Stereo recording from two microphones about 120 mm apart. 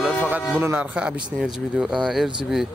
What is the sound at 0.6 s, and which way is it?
Speech, 20° right (ahead or behind).